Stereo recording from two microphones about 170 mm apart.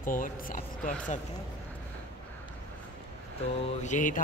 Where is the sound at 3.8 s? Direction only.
45° left (ahead or behind).